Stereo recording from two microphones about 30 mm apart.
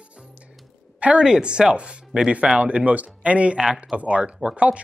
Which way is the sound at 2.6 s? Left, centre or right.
Right.